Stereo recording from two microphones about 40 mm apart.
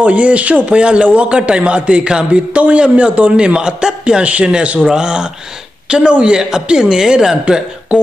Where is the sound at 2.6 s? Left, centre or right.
Right.